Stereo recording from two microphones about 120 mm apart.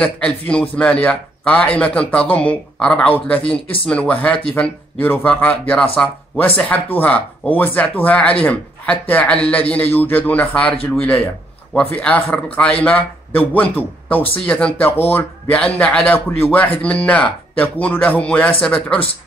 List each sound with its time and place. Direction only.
0.0 s speech: 10° left (ahead or behind)